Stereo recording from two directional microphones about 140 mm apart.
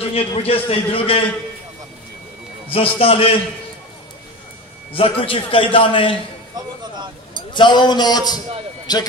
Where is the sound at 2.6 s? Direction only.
45° left (ahead or behind).